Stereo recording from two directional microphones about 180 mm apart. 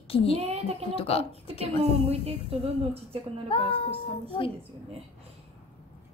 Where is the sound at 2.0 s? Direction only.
35° right (ahead or behind).